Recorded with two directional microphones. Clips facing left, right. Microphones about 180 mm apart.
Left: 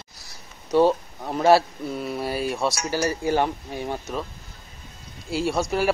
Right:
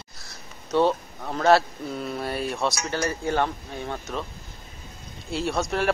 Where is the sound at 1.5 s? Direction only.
5° left (ahead or behind).